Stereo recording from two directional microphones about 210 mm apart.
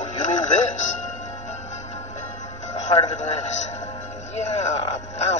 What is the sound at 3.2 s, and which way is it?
Music, 35° left (ahead or behind).